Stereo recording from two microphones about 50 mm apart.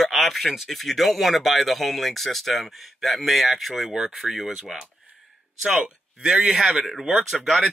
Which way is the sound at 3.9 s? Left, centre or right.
Centre.